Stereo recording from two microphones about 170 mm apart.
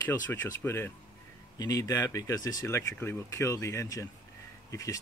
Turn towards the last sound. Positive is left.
turn(degrees=20)  # may be behind; listen again after turning